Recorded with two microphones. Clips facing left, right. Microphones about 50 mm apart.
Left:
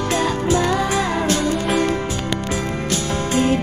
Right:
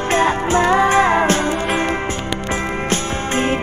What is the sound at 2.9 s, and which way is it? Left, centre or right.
Music, right.